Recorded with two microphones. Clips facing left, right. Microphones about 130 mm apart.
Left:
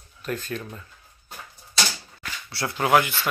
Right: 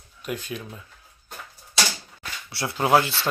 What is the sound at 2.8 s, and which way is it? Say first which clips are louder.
Speech: even; 30° right (ahead or behind).